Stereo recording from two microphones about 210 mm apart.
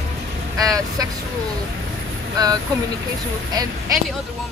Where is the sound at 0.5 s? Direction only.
15° right (ahead or behind).